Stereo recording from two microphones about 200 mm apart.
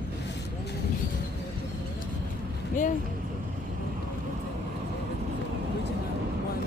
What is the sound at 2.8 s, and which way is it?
Speech, 40° left (ahead or behind).